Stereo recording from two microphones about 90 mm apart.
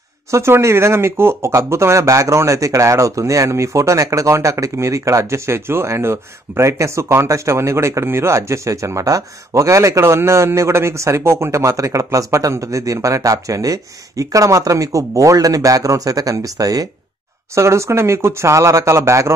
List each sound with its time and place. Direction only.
0.3 s speech: 30° right (ahead or behind)